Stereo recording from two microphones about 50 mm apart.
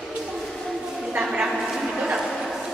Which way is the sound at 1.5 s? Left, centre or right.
Centre.